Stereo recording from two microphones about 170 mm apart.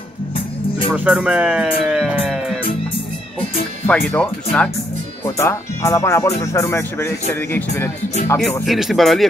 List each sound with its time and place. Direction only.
0.9 s speech: 5° right (ahead or behind)
3.8 s speech: 10° left (ahead or behind)
8.6 s speech: centre (ahead or behind)